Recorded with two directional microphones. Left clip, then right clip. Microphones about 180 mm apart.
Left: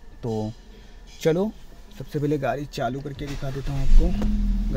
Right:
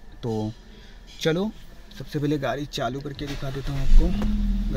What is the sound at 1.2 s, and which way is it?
Speech, 10° left (ahead or behind).